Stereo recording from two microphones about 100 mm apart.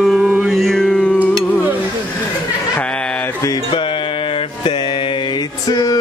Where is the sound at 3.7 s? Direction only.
60° left (ahead or behind).